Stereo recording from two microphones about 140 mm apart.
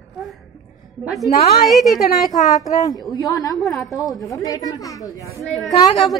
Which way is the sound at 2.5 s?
25° left (ahead or behind).